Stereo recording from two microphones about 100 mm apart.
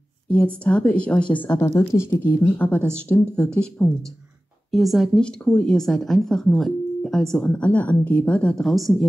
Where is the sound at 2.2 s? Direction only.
20° left (ahead or behind).